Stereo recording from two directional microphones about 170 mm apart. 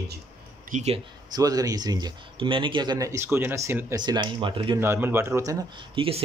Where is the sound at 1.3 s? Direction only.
20° right (ahead or behind).